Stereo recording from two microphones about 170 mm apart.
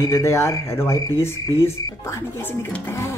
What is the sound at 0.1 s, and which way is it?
Speech, 15° left (ahead or behind).